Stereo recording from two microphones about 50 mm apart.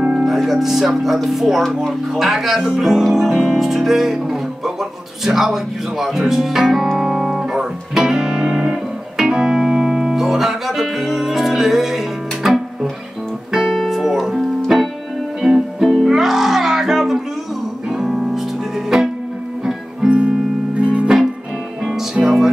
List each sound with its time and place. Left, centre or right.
0.0 s music: centre
1.9 s speech: centre
5.2 s music: centre
20.1 s music: centre
22.1 s music: centre